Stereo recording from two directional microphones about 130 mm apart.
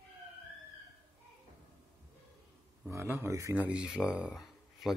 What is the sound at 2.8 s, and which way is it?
Speech, 20° right (ahead or behind).